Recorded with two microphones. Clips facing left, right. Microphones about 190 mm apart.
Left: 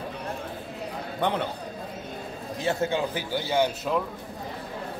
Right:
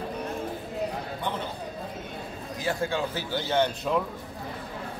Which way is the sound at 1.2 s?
70° left (ahead or behind).